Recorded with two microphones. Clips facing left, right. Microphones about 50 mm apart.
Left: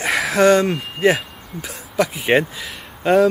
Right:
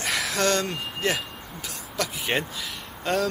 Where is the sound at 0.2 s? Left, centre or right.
Centre.